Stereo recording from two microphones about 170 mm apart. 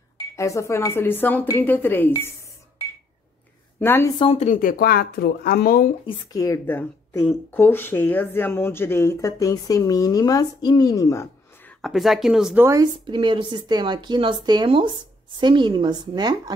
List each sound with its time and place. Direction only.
0.4 s speech: 15° left (ahead or behind)
3.8 s speech: 15° left (ahead or behind)
4.2 s speech: 35° left (ahead or behind); by 5.9 s 55° left (ahead or behind)
6.0 s speech: 25° left (ahead or behind)
11.8 s speech: centre (ahead or behind)
12.6 s speech: 20° right (ahead or behind)